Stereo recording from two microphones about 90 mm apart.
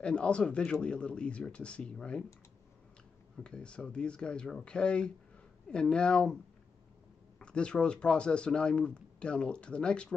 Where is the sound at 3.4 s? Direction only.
10° left (ahead or behind).